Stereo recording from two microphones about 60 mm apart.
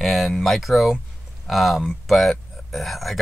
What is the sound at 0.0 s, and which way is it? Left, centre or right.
Speech, centre.